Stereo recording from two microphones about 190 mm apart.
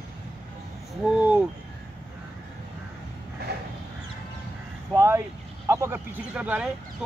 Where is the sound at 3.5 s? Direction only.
60° right (ahead or behind).